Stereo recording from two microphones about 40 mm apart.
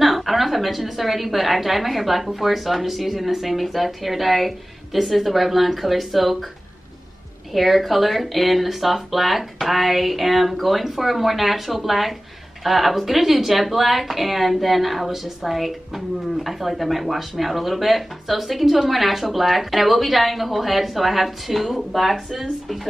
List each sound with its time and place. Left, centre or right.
0.0 s a woman's voice: centre
7.5 s a woman's voice: centre